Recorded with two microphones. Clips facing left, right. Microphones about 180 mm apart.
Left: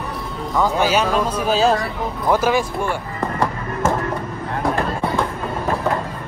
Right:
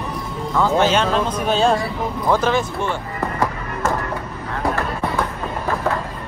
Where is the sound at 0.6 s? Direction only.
10° left (ahead or behind).